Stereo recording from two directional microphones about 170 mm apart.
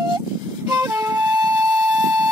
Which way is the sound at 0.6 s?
25° right (ahead or behind).